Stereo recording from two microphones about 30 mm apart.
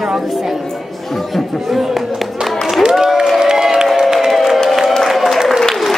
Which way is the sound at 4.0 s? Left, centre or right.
Centre.